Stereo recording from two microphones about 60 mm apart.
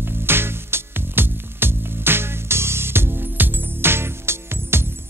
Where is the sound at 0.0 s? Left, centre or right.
Right.